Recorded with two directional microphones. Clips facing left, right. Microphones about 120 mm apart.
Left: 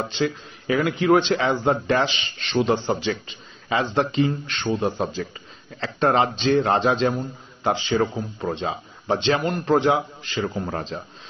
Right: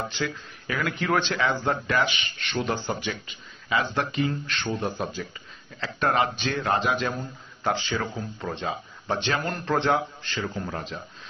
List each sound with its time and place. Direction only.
0.1 s a man's voice: 20° left (ahead or behind)
10.3 s a man's voice: 25° left (ahead or behind)
10.9 s speech: 40° left (ahead or behind)